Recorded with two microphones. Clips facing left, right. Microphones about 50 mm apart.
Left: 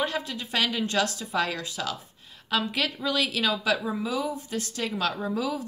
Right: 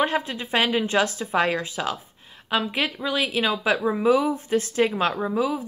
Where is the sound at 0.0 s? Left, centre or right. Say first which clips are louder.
Right 5 dB; right.